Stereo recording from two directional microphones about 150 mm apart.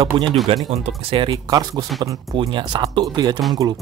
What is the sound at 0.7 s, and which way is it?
Speech, 40° right (ahead or behind).